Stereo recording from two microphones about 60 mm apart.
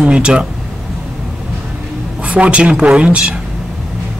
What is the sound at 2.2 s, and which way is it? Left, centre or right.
A woman's voice, right.